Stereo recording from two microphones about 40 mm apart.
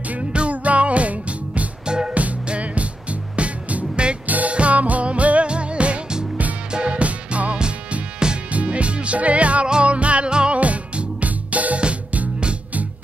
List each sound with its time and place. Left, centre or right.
0.1 s music: right
1.9 s music: right
4.3 s music: right